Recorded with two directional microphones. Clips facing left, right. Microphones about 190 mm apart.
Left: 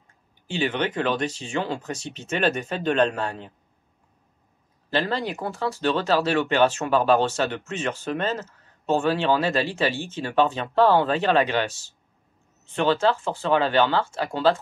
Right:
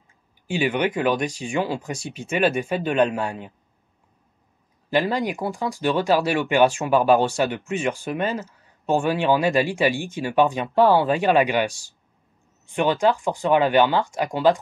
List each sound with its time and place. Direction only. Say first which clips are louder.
0.5 s speech: right 3 dB; 10° right (ahead or behind)
4.9 s speech: right 3 dB; 15° right (ahead or behind)